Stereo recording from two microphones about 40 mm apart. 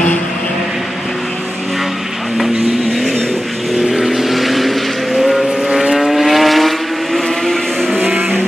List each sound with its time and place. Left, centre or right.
3.9 s vehicle: centre
5.7 s vehicle: centre
5.9 s vehicle: centre
7.4 s vehicle: centre
8.0 s vehicle: right